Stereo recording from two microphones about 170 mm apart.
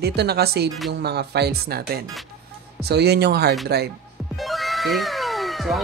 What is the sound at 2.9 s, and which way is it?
A woman's voice, 75° right (ahead or behind).